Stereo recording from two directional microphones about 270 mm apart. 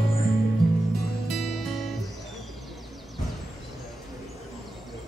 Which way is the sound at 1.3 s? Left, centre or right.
Centre.